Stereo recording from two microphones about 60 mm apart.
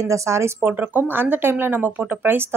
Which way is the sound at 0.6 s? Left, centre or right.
Right.